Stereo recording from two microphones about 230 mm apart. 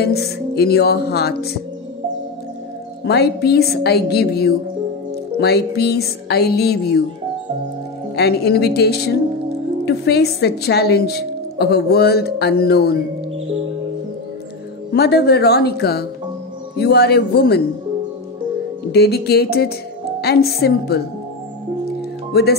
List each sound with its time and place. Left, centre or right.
0.0 s speech: left
3.1 s speech: left
8.2 s speech: left
14.9 s speech: left
18.9 s speech: left
22.3 s speech: left